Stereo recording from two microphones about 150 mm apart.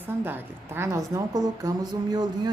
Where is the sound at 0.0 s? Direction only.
15° right (ahead or behind).